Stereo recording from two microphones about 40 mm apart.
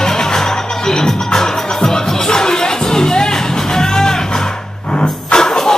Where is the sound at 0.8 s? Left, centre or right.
Centre.